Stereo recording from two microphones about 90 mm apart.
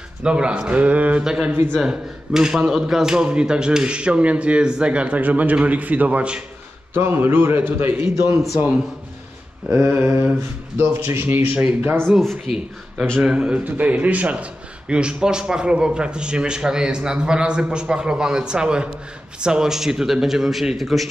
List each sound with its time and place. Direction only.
0.2 s a man's voice: 10° right (ahead or behind)
6.9 s a man's voice: 25° right (ahead or behind)
9.7 s a man's voice: 25° right (ahead or behind)
12.1 s speech: centre (ahead or behind)
13.2 s a man's voice: 10° right (ahead or behind)